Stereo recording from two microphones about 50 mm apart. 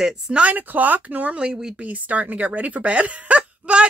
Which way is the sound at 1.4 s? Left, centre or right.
Centre.